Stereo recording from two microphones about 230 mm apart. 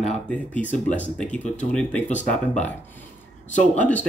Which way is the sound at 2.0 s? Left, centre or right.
Left.